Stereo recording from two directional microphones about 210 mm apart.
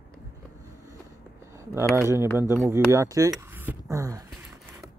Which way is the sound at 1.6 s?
15° right (ahead or behind).